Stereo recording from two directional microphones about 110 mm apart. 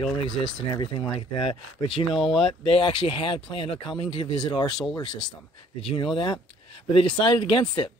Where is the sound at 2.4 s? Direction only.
50° left (ahead or behind).